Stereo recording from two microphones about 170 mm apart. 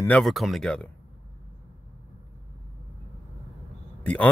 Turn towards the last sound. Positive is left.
turn(degrees=10)  # may be behind; listen again after turning